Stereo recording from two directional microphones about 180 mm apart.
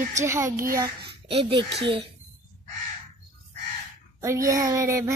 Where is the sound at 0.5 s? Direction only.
50° right (ahead or behind).